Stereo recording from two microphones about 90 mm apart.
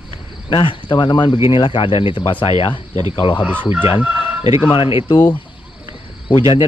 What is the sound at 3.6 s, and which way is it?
Speech, 20° right (ahead or behind).